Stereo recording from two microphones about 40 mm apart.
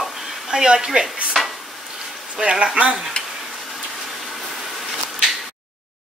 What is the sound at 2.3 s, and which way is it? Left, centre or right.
Speech, right.